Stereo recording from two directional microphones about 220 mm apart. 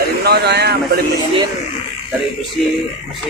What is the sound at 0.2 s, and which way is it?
Speech, 45° right (ahead or behind).